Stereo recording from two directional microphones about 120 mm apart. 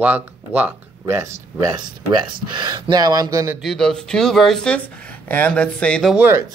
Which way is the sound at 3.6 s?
5° left (ahead or behind).